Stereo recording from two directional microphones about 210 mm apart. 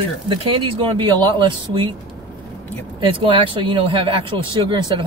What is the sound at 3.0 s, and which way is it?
Speech, 25° right (ahead or behind).